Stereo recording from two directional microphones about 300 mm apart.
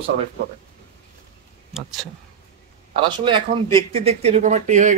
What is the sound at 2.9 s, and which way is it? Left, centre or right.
Speech, centre.